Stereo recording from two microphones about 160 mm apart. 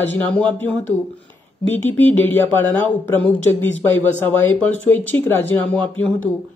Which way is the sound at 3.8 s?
15° left (ahead or behind).